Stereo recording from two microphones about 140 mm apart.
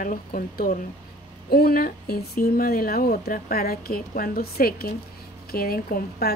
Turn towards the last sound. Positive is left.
turn(degrees=90)